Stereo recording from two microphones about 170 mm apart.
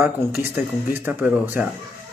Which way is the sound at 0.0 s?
10° right (ahead or behind).